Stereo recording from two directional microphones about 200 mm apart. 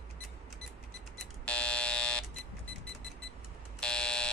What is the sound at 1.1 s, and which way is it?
Buzzer, 5° left (ahead or behind).